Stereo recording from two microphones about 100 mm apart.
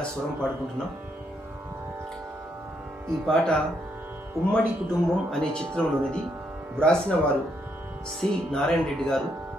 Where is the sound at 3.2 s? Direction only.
5° left (ahead or behind).